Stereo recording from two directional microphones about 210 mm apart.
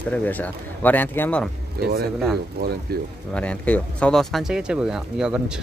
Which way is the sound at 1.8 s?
50° right (ahead or behind).